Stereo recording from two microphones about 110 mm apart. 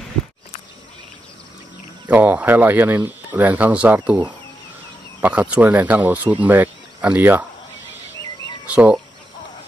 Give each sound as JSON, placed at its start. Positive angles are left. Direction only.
{"t": 2.0, "sound": "speech", "side_deg": -15}
{"t": 8.6, "sound": "speech", "side_deg": -10}